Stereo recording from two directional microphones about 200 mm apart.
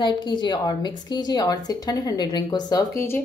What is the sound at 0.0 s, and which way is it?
A woman's voice, 20° left (ahead or behind).